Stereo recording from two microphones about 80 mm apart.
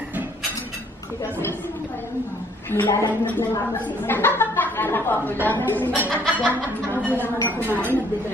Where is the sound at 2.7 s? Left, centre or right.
Left.